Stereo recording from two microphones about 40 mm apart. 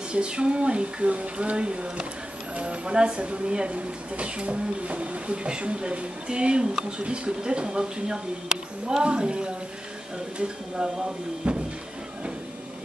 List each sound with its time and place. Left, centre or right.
0.1 s speech: right
11.4 s speech: right